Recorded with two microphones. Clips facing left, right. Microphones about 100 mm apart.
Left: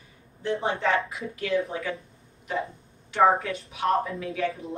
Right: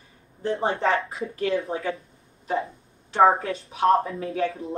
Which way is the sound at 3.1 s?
30° right (ahead or behind).